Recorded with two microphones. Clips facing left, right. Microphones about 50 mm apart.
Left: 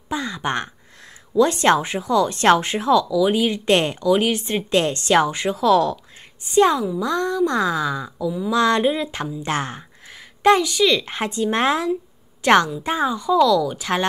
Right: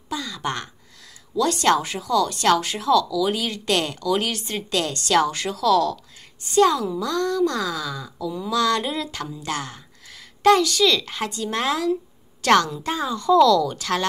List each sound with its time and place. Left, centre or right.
0.1 s a sound: left
1.3 s speech: left
8.2 s speech: centre
8.5 s speech: left
10.4 s speech: centre
11.9 s a sound: centre
12.8 s speech: left
13.2 s speech: centre